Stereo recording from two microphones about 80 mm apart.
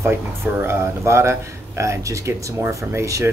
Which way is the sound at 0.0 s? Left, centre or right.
Right.